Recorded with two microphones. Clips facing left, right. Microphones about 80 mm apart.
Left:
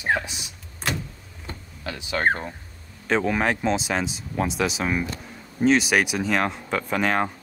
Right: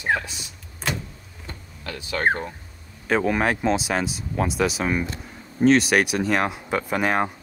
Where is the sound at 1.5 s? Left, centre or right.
Centre.